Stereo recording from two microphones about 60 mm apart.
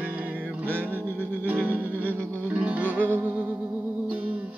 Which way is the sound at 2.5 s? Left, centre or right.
Right.